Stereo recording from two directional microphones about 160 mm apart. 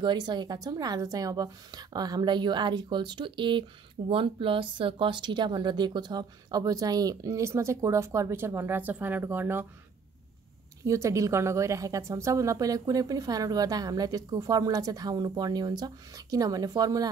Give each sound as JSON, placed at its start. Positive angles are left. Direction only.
{"t": 0.0, "sound": "a woman's voice", "side_deg": -25}
{"t": 10.8, "sound": "a woman's voice", "side_deg": -20}